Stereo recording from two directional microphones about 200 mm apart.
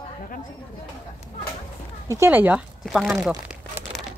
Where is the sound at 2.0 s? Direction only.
15° right (ahead or behind).